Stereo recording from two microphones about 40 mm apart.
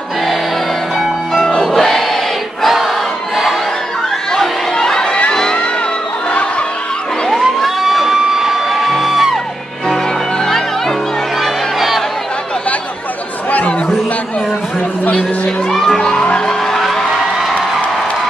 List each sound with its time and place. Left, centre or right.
1.6 s choir: centre
2.6 s crowd: centre
4.3 s crowd: centre
5.3 s music: centre
7.2 s emergency vehicle: centre
10.4 s music: centre
11.4 s music: centre
15.7 s music: centre
16.0 s music: centre
16.7 s music: centre